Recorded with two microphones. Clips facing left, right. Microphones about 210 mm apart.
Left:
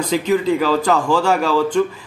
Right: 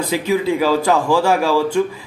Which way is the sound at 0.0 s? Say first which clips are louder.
Left 1 dB; 10° right (ahead or behind).